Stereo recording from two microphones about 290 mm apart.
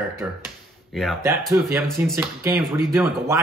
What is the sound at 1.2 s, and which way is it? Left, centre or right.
A man's voice, centre.